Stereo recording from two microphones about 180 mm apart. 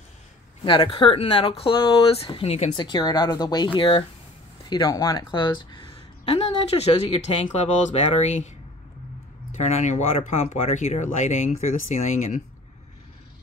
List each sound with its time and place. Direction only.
0.7 s speech: 30° left (ahead or behind)
9.6 s speech: 35° left (ahead or behind)